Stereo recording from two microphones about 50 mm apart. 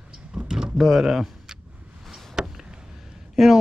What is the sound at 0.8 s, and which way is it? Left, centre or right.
Speech, centre.